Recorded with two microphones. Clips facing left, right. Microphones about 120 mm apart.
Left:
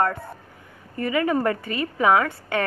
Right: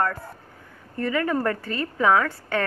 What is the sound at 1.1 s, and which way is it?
A woman's voice, 15° left (ahead or behind).